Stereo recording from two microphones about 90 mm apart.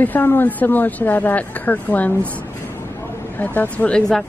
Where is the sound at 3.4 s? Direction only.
20° left (ahead or behind).